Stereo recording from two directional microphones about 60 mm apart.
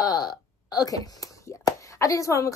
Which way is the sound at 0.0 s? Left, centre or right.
Left.